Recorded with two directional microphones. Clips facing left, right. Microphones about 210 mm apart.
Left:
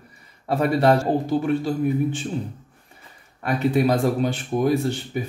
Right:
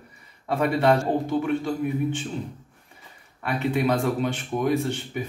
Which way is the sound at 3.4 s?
40° left (ahead or behind).